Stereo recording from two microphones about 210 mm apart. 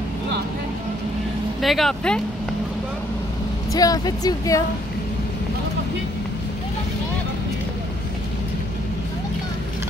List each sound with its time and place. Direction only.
1.6 s speech: centre (ahead or behind)
3.7 s speech: 15° left (ahead or behind)